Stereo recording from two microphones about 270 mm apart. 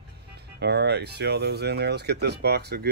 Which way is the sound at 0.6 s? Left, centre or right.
Right.